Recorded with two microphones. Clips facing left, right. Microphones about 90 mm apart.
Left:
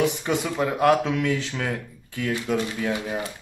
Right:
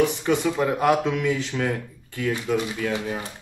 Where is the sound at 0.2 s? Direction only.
Centre (ahead or behind).